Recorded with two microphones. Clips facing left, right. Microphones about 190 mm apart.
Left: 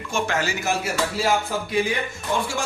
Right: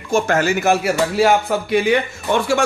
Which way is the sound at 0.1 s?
50° right (ahead or behind).